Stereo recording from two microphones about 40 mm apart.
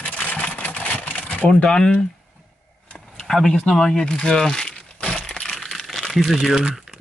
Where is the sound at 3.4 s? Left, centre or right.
Centre.